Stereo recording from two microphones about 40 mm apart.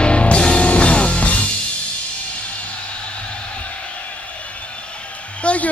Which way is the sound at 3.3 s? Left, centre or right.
Left.